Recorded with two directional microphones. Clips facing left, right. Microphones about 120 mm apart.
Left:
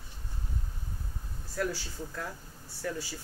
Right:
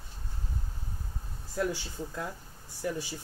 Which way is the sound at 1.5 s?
20° right (ahead or behind).